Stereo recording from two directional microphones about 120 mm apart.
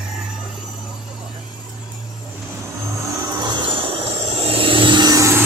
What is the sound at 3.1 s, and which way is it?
Vehicle, 25° right (ahead or behind).